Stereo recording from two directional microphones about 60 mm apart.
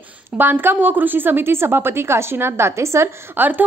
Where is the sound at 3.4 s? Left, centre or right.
Right.